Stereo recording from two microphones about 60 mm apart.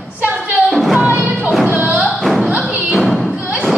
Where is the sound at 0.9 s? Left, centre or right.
Right.